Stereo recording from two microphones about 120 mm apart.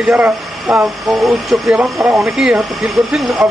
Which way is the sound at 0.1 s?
10° right (ahead or behind).